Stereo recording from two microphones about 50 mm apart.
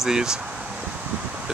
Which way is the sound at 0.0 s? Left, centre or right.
Centre.